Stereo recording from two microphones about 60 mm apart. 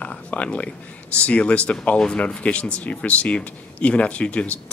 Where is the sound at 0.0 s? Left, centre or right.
Left.